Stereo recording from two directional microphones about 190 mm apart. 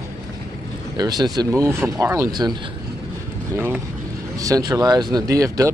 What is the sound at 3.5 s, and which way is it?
Speech, 10° right (ahead or behind).